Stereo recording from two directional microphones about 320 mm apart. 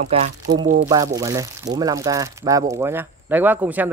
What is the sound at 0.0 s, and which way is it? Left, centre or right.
Speech, right.